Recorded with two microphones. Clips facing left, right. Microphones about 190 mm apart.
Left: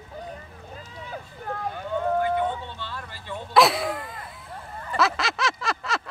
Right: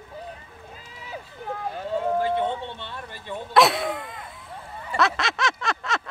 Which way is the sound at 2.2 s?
25° right (ahead or behind).